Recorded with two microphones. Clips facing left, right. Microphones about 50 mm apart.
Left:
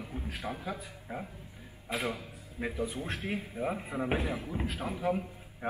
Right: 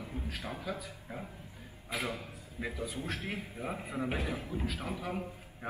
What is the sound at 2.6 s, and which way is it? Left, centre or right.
Speech, left.